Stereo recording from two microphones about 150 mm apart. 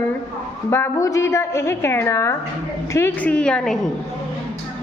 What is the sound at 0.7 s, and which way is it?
A woman's voice, 15° left (ahead or behind).